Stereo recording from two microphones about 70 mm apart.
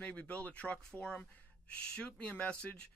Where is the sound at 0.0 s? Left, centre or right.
Left.